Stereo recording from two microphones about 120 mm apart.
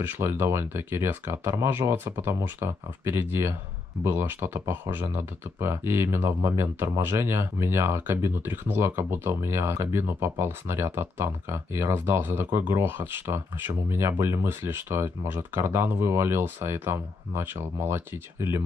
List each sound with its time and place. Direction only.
0.0 s speech: 20° right (ahead or behind)